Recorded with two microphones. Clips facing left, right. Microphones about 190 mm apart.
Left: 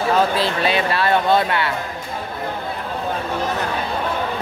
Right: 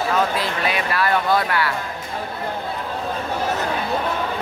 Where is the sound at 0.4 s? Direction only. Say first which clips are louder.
Left 4 dB; 30° left (ahead or behind).